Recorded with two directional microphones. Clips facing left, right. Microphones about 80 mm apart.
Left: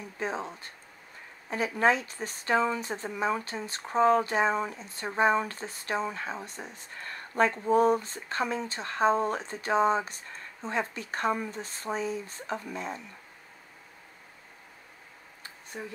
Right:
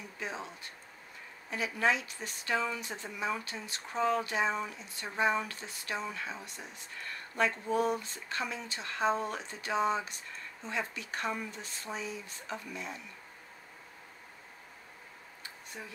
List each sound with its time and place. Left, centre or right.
0.2 s speech: left
15.7 s speech: left